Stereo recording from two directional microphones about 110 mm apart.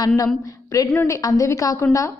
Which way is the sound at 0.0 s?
35° left (ahead or behind).